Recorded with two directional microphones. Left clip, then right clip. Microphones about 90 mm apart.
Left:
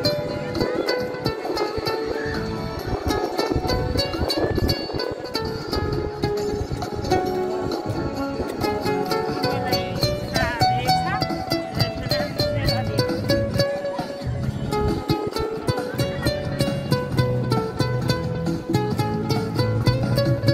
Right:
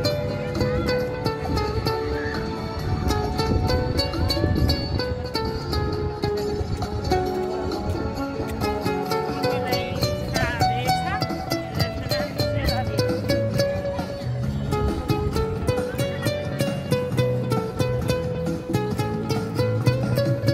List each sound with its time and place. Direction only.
0.0 s music: 5° left (ahead or behind)
3.1 s music: 15° left (ahead or behind)
6.2 s music: 25° left (ahead or behind)
8.6 s music: 15° left (ahead or behind)
9.1 s music: centre (ahead or behind)
14.9 s music: 40° right (ahead or behind)
19.2 s music: 30° right (ahead or behind)
20.2 s music: 15° right (ahead or behind)